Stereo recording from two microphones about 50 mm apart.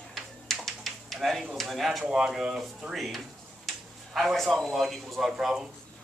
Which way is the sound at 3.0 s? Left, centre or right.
Centre.